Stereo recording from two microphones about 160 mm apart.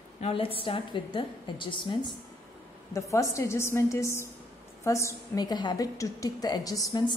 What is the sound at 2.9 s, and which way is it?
A woman's voice, 20° left (ahead or behind).